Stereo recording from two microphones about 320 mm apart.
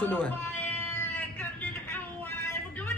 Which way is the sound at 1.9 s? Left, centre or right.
Centre.